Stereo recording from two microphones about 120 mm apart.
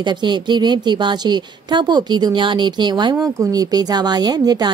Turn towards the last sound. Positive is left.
turn(degrees=-35)  # may be behind; listen again after turning